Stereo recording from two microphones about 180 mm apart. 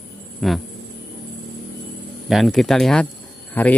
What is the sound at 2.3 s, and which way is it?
Speech, centre (ahead or behind).